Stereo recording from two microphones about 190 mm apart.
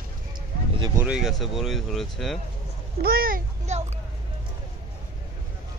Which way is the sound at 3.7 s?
35° right (ahead or behind).